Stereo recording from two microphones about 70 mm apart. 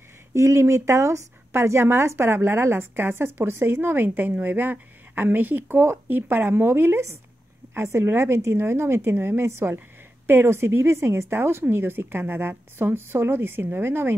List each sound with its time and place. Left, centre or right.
0.3 s speech: right